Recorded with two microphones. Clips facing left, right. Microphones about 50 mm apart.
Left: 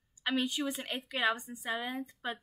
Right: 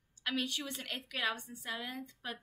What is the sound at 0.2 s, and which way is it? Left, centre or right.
A woman's voice, centre.